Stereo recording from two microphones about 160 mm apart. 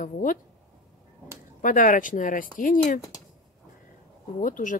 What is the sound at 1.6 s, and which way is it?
Speech, 55° left (ahead or behind).